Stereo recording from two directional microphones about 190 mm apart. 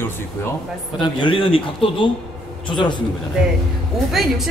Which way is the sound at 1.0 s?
25° left (ahead or behind).